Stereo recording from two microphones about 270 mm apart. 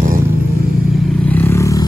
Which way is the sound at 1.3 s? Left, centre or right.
Centre.